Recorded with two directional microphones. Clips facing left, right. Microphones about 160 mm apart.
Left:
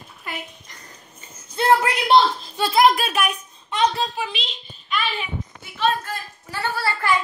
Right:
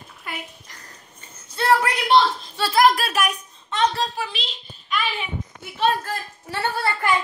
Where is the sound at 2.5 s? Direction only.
10° left (ahead or behind).